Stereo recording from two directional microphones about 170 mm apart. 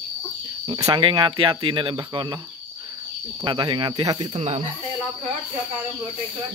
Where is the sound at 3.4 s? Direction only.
30° right (ahead or behind).